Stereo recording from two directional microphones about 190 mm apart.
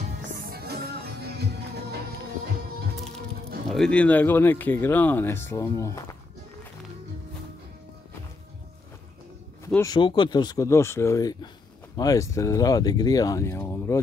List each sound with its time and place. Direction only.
0.5 s music: 55° right (ahead or behind)
3.6 s speech: 5° left (ahead or behind)
9.8 s speech: 25° left (ahead or behind)